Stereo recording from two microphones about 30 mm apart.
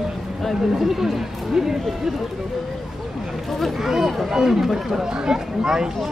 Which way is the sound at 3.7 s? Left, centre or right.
Centre.